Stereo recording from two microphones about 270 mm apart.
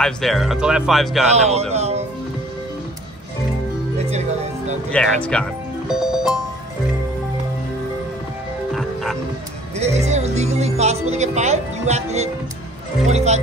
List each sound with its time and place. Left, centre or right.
0.0 s speech: centre
1.3 s speech: right
4.1 s speech: right
4.9 s speech: centre
9.8 s speech: right